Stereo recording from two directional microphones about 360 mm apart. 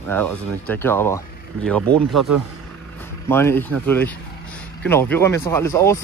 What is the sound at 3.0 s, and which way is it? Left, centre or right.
Speech, centre.